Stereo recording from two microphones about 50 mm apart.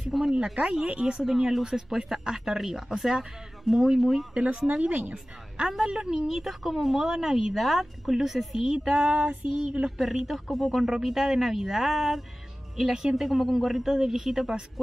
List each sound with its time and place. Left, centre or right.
0.3 s speech: centre
1.2 s speech: centre
4.0 s speech: centre
4.3 s speech: right
6.2 s speech: centre